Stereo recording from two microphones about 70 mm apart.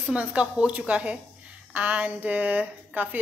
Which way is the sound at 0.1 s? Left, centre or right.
Centre.